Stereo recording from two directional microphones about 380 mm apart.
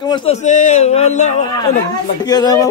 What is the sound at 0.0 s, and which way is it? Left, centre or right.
Speech, centre.